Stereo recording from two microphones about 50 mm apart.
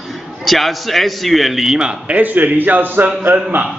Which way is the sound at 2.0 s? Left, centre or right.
Right.